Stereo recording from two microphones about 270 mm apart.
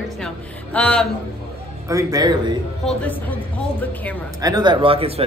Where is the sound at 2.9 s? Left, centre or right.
Centre.